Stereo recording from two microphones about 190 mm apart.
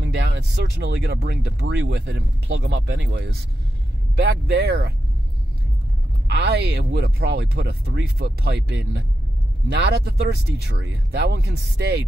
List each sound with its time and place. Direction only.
0.0 s speech: 65° right (ahead or behind)
6.2 s speech: 60° right (ahead or behind)